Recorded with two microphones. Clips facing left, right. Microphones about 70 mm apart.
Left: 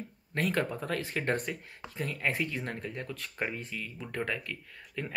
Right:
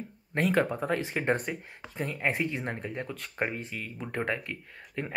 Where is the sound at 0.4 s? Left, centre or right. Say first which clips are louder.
Right 4 dB; centre.